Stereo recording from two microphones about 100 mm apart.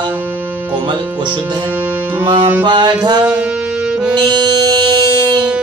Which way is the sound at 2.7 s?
50° right (ahead or behind).